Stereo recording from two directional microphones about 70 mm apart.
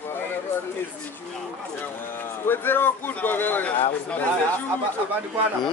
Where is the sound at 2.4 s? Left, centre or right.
Left.